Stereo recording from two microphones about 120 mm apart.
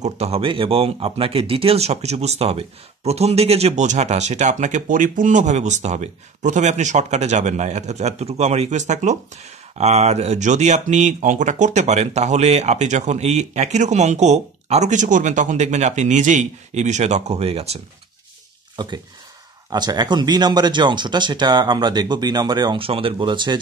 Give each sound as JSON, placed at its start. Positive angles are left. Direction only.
{"t": 0.0, "sound": "speech", "side_deg": -65}
{"t": 0.4, "sound": "speech", "side_deg": -45}
{"t": 19.7, "sound": "speech", "side_deg": -35}